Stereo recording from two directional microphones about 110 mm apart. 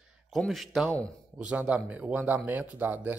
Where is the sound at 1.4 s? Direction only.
10° right (ahead or behind).